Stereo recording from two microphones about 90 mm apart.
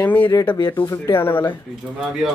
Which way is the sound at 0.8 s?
30° left (ahead or behind).